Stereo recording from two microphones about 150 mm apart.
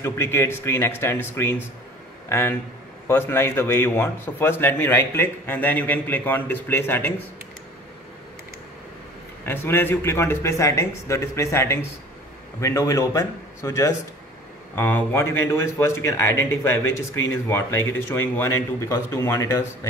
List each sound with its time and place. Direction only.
0.0 s a man's voice: 15° left (ahead or behind)
9.5 s a man's voice: 15° left (ahead or behind)